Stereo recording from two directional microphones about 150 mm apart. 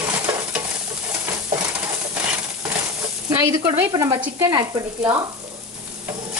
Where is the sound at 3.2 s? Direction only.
15° right (ahead or behind).